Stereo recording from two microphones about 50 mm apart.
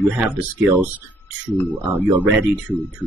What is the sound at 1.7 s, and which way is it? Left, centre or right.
Speech, right.